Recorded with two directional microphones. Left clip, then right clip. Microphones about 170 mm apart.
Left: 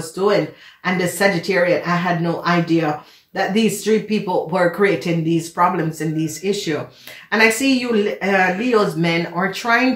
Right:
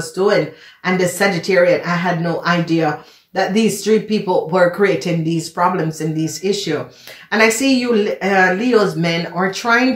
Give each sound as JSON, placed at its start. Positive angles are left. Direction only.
{"t": 0.2, "sound": "speech", "side_deg": -25}